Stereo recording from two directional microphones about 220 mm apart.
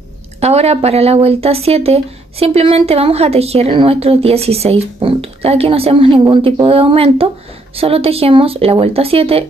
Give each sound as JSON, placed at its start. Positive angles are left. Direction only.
{"t": 0.4, "sound": "speech", "side_deg": -30}